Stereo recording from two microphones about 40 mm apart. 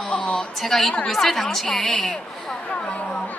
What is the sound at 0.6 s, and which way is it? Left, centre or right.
A woman's voice, centre.